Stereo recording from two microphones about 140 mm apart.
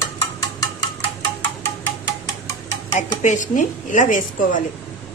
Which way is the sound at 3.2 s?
65° left (ahead or behind).